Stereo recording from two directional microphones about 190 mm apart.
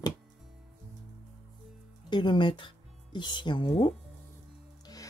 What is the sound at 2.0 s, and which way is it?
Speech, 25° left (ahead or behind).